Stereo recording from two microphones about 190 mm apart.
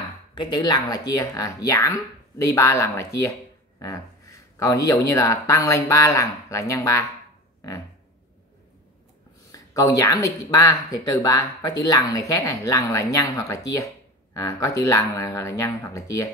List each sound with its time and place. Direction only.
0.3 s speech: 25° left (ahead or behind)
9.5 s speech: 15° left (ahead or behind)